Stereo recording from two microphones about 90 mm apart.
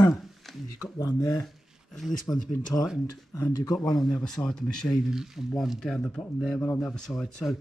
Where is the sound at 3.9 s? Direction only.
5° left (ahead or behind).